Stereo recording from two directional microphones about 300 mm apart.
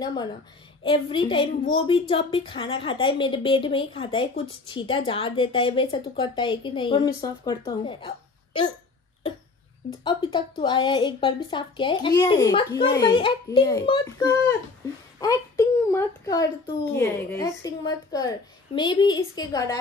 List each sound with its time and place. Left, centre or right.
0.0 s a woman's voice: centre
10.0 s a woman's voice: centre